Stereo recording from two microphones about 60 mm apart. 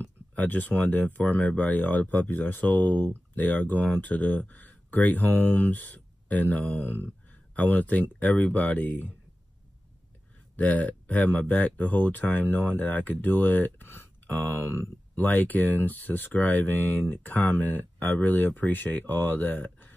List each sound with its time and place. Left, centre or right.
0.0 s speech: left
10.5 s speech: left